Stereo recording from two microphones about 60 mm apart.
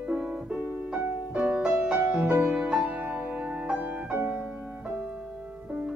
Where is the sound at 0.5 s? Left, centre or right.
Right.